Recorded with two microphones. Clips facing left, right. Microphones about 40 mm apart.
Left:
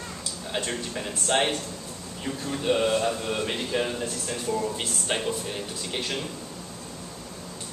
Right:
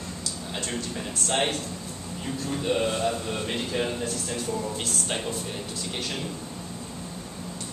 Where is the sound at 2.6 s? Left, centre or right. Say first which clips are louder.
Left 3 dB; centre.